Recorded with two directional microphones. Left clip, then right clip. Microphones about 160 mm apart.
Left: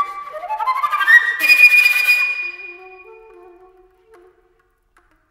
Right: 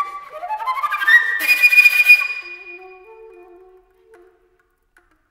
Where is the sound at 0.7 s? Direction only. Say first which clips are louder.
Left 2 dB; 20° right (ahead or behind).